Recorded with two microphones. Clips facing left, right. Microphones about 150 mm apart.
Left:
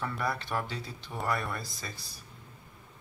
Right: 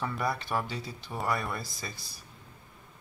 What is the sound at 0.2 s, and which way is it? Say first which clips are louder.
Speech: right 2 dB; 5° right (ahead or behind).